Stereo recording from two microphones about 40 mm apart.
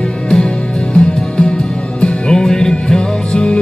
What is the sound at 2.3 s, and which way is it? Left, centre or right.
Music, centre.